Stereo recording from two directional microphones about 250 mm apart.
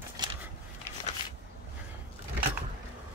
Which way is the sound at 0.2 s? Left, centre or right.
Centre.